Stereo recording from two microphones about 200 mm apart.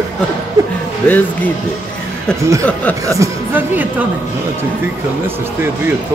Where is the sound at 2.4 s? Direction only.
15° right (ahead or behind).